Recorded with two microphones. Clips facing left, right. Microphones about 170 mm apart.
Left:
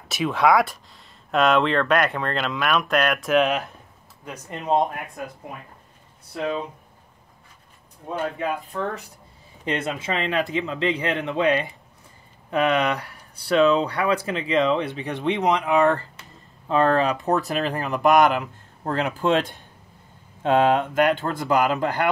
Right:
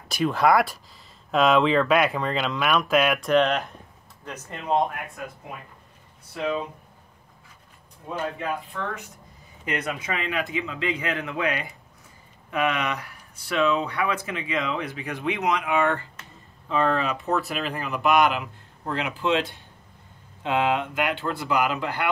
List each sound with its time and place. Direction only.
0.1 s speech: centre (ahead or behind); by 4.8 s 15° left (ahead or behind)
8.6 s speech: 35° left (ahead or behind)
9.7 s a man's voice: 25° left (ahead or behind); by 22.1 s 45° left (ahead or behind)